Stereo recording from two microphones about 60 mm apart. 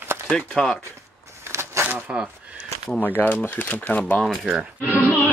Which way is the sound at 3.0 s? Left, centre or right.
Left.